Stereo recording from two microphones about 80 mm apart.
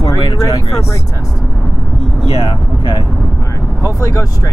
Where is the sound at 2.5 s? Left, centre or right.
Left.